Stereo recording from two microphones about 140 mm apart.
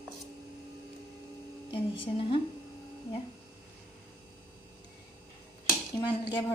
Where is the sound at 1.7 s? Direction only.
40° left (ahead or behind).